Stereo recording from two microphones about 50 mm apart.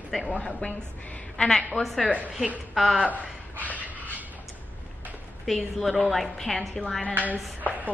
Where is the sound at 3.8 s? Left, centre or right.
Right.